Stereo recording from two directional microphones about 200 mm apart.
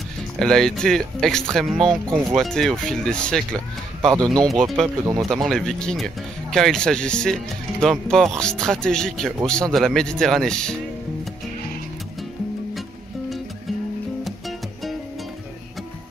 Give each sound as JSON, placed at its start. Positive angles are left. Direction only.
{"t": 0.4, "sound": "speech", "side_deg": 0}
{"t": 4.0, "sound": "speech", "side_deg": -20}
{"t": 4.5, "sound": "speech", "side_deg": 0}